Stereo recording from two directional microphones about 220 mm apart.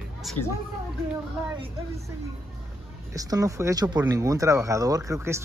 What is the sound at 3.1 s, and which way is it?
Speech, 15° right (ahead or behind).